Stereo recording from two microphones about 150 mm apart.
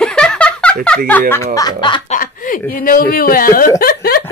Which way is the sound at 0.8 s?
10° left (ahead or behind).